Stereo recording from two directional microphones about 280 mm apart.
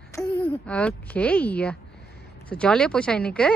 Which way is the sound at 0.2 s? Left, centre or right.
Centre.